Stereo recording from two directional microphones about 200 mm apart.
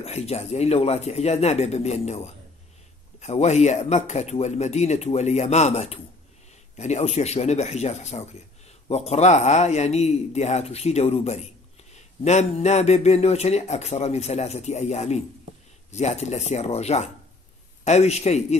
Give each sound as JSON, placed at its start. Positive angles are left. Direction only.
{"t": 0.0, "sound": "speech", "side_deg": 30}